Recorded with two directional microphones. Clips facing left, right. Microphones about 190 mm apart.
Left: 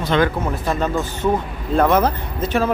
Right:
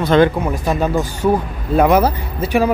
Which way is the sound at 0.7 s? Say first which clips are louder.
Right 3 dB; 10° right (ahead or behind).